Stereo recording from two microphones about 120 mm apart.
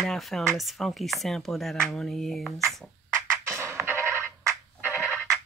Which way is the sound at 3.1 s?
20° right (ahead or behind).